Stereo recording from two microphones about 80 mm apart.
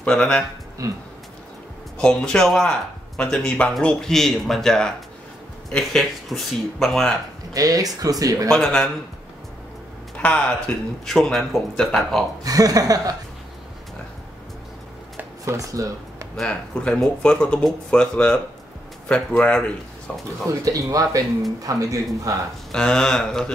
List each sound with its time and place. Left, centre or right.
0.0 s speech: centre
0.8 s speech: right
2.0 s speech: centre
7.5 s speech: right
8.5 s speech: centre
10.1 s speech: centre
11.1 s speech: centre
12.4 s speech: right
15.5 s speech: right
16.3 s speech: centre
20.6 s speech: right
22.7 s speech: centre